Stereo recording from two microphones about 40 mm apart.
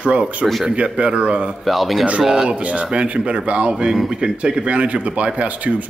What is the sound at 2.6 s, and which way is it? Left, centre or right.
Speech, right.